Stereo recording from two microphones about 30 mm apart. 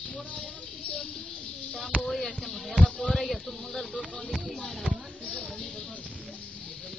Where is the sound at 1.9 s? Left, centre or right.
Right.